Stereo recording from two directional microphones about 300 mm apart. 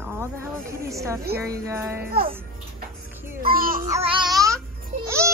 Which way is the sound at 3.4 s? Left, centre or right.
Right.